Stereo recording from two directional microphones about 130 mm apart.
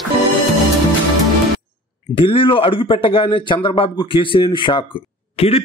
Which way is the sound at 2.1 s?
40° left (ahead or behind).